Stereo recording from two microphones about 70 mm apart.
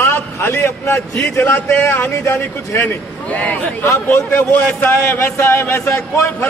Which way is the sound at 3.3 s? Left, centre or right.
Left.